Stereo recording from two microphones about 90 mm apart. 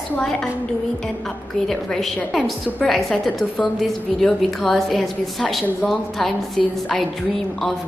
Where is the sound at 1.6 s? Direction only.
5° left (ahead or behind).